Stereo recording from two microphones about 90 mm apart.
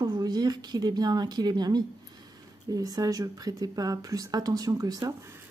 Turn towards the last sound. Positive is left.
turn(degrees=-45)  # may be behind; listen again after turning